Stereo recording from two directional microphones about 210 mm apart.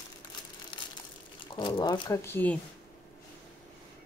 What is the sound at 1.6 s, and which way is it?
Speech, 20° left (ahead or behind).